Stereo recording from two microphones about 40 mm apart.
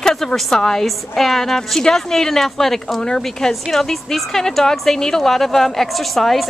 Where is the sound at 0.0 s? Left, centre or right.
Centre.